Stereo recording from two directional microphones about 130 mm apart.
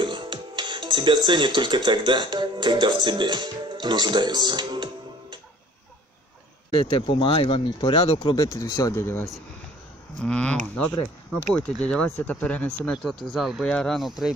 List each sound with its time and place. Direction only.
0.0 s speech: 40° right (ahead or behind)
6.8 s speech: 40° left (ahead or behind)
8.4 s speech: 25° left (ahead or behind)
10.2 s speech: 10° left (ahead or behind)